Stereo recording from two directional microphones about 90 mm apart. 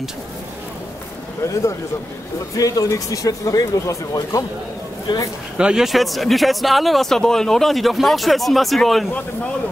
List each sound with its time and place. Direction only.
2.5 s speech: 40° left (ahead or behind)
5.1 s speech: 60° left (ahead or behind)
5.6 s speech: 10° right (ahead or behind)